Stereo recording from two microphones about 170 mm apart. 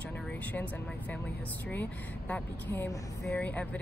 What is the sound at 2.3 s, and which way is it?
Speech, 10° left (ahead or behind).